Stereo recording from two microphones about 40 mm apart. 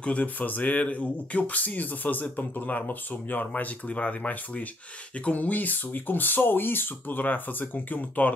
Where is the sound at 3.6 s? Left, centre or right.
Left.